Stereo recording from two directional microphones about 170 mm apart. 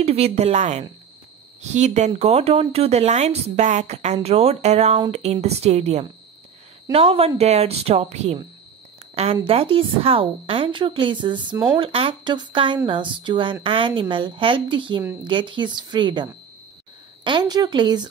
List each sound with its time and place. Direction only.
0.0 s a woman's voice: 35° right (ahead or behind)